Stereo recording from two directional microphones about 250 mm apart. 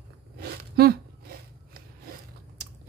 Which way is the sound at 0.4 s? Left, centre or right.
Right.